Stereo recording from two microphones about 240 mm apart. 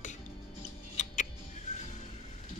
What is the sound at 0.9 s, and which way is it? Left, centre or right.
Music, left.